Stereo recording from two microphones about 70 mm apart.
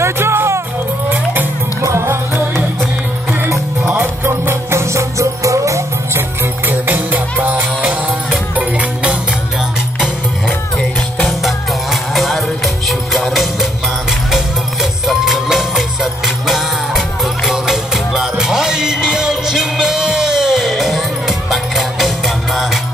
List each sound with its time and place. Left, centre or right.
0.0 s music: right
1.1 s music: right
1.8 s music: right
4.0 s music: right; by 9.2 s centre
10.8 s music: centre